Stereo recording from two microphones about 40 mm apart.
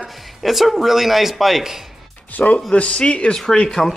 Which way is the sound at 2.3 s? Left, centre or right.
Left.